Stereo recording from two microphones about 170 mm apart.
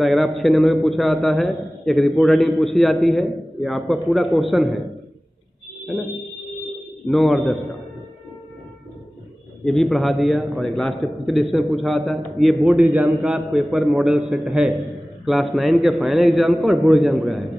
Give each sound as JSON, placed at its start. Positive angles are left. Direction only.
{"t": 0.0, "sound": "a man's voice", "side_deg": 0}
{"t": 5.9, "sound": "a man's voice", "side_deg": 5}
{"t": 9.7, "sound": "a man's voice", "side_deg": 0}